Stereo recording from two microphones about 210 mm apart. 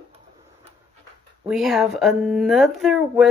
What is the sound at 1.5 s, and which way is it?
Speech, centre (ahead or behind).